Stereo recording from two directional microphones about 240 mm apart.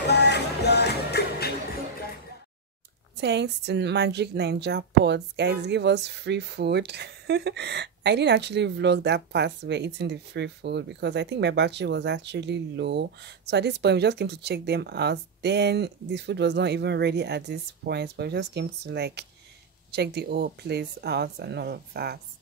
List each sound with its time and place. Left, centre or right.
0.0 s music: left
3.2 s a woman's voice: right